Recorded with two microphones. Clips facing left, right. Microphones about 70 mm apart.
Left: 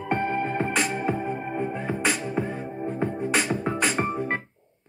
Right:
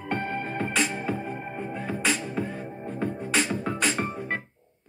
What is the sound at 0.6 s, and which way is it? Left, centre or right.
Music, centre.